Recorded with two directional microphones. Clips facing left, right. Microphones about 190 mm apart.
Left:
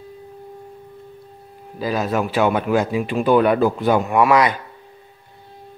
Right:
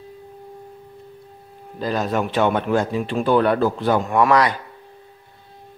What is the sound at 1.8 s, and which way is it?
Speech, 5° left (ahead or behind).